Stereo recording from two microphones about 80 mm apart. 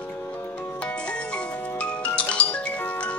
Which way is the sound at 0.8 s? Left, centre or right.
Centre.